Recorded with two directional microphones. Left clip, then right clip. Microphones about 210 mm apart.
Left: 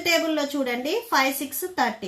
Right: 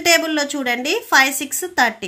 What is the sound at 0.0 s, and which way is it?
A woman's voice, 45° right (ahead or behind).